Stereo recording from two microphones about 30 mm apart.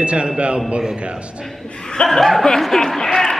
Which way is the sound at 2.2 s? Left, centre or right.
Centre.